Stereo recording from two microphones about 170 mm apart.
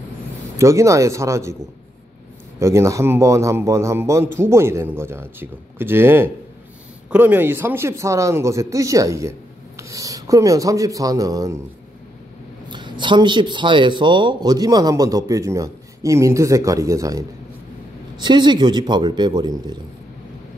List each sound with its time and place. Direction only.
0.6 s speech: 15° right (ahead or behind)
2.6 s speech: 15° right (ahead or behind)
12.6 s speech: 25° right (ahead or behind)